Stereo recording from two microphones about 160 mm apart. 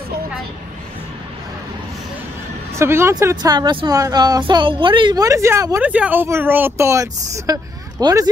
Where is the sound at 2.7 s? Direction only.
15° right (ahead or behind).